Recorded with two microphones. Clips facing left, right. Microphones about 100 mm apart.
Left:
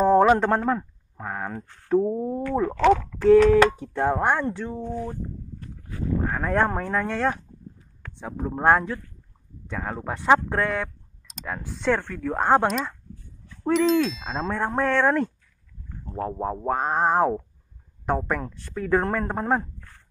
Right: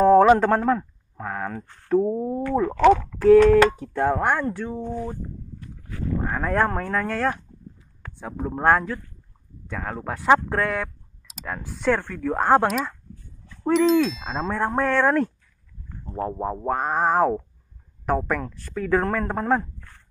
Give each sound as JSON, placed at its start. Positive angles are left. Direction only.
{"t": 0.3, "sound": "ding", "side_deg": 0}
{"t": 0.7, "sound": "a sound", "side_deg": 10}
{"t": 2.0, "sound": "ding", "side_deg": -5}
{"t": 2.7, "sound": "speech", "side_deg": -10}
{"t": 3.4, "sound": "ding", "side_deg": 0}
{"t": 4.2, "sound": "speech", "side_deg": 0}
{"t": 6.2, "sound": "ding", "side_deg": 0}
{"t": 9.8, "sound": "speech", "side_deg": 5}
{"t": 12.1, "sound": "ding", "side_deg": 0}
{"t": 16.2, "sound": "ding", "side_deg": 0}
{"t": 18.0, "sound": "speech", "side_deg": 25}